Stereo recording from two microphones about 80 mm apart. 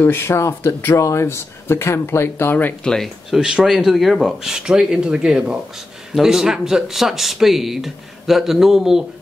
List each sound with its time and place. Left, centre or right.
0.0 s speech: left
2.8 s speech: centre
3.3 s speech: centre